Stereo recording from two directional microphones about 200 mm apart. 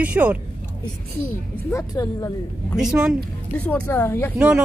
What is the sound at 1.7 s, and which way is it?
Speech, 15° left (ahead or behind).